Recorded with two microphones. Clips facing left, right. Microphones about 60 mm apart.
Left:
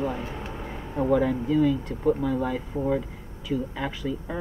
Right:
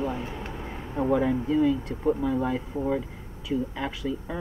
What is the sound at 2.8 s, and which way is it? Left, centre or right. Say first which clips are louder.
Speech: left 1 dB; centre.